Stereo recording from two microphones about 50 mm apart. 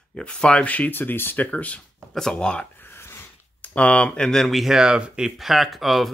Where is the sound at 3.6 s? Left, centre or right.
Left.